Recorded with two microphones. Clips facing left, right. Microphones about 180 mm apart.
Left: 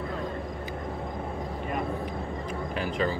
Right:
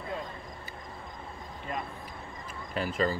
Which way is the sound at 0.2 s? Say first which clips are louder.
Left 8 dB; 70° left (ahead or behind).